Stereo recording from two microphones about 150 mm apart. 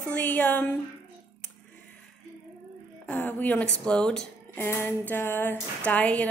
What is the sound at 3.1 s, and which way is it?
Speech, 10° left (ahead or behind).